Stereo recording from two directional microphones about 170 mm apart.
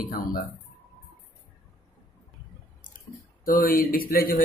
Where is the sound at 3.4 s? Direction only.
55° left (ahead or behind).